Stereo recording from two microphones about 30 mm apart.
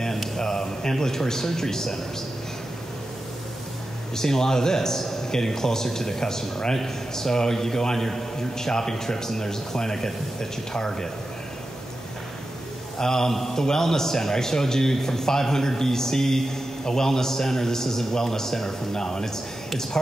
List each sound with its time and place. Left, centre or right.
0.4 s a man's voice: left
4.1 s a man's voice: centre
13.0 s a man's voice: centre